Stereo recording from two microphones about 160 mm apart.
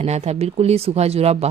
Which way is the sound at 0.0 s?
40° right (ahead or behind).